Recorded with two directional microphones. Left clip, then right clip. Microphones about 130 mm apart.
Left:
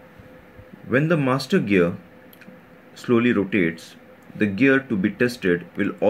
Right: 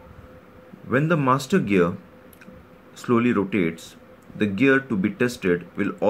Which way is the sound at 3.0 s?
15° left (ahead or behind).